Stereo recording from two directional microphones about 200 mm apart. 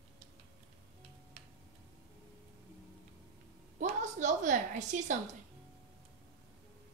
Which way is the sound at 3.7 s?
40° right (ahead or behind).